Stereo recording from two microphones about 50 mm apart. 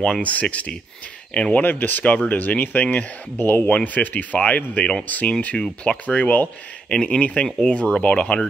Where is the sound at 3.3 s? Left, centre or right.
Left.